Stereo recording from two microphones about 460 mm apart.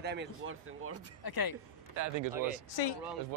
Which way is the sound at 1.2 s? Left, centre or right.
Left.